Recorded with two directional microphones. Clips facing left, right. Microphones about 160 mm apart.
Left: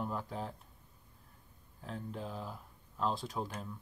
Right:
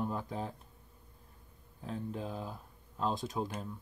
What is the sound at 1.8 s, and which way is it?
Speech, 15° right (ahead or behind).